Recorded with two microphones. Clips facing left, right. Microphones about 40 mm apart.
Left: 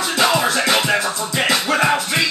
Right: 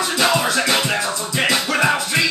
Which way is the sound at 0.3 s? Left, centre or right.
Left.